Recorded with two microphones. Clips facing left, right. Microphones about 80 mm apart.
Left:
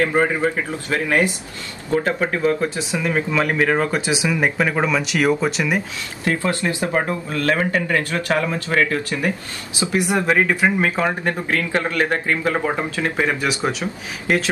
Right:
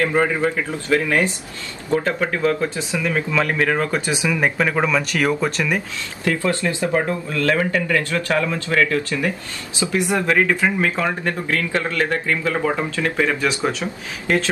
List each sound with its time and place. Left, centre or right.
0.0 s speech: left
2.0 s speech: centre
4.6 s speech: centre
6.2 s speech: left
12.9 s speech: left